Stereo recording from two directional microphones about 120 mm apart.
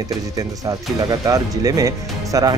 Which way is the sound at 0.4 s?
30° right (ahead or behind).